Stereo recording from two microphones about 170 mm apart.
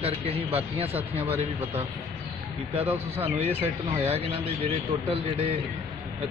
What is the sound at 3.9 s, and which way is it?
A man's voice, 35° right (ahead or behind).